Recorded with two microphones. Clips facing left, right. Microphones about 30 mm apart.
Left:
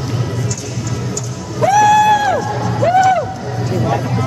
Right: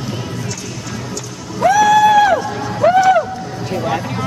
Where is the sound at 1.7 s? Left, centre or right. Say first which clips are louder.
Even; centre.